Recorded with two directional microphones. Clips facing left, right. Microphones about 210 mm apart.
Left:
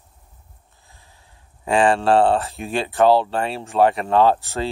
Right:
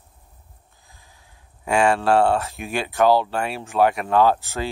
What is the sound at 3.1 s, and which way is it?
Speech, 30° left (ahead or behind).